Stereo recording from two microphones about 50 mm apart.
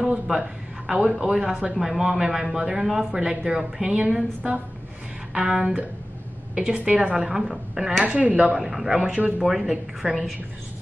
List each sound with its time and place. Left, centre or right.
0.3 s a man's voice: centre
5.3 s a man's voice: right
8.0 s speech: right
8.5 s a man's voice: centre
9.0 s speech: right
9.4 s a man's voice: centre
10.0 s a man's voice: centre